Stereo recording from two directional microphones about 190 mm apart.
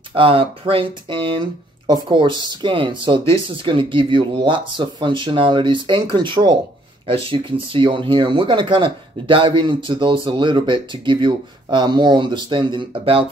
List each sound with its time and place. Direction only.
0.1 s speech: 30° right (ahead or behind)